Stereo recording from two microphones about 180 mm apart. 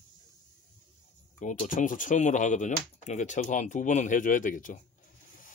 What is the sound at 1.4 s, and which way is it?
Speech, 45° left (ahead or behind).